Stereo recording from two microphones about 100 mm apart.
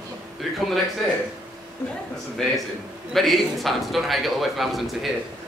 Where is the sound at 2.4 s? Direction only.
5° left (ahead or behind).